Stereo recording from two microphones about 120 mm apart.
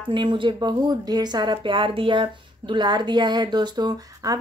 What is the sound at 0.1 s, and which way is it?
Speech, 40° right (ahead or behind).